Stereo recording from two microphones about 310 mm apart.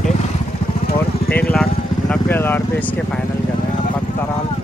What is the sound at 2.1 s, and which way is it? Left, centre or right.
Speech, centre.